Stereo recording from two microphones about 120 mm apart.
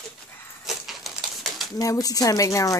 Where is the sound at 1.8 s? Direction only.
30° left (ahead or behind).